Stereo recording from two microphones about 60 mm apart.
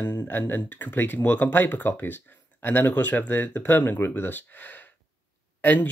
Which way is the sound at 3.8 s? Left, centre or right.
Left.